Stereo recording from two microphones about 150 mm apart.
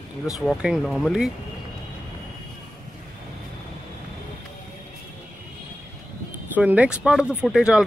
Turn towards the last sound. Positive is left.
turn(degrees=-5)  # may be behind; listen again after turning